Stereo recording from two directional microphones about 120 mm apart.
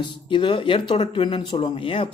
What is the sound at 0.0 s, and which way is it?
Speech, 45° left (ahead or behind).